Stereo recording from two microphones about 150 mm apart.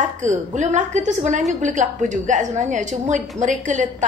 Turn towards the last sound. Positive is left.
turn(degrees=-55)  # may be behind; listen again after turning